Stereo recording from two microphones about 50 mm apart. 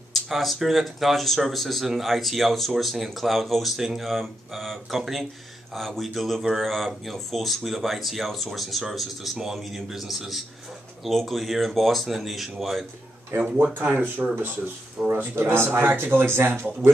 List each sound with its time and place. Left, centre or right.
0.1 s speech: centre
13.3 s speech: right
14.0 s speech: right
15.0 s speech: centre
15.3 s speech: right